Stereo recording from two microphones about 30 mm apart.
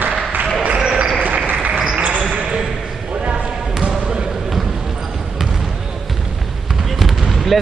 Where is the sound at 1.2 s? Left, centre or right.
Right.